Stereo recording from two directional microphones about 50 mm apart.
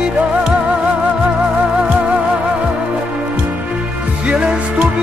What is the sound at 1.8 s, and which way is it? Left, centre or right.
Music, right.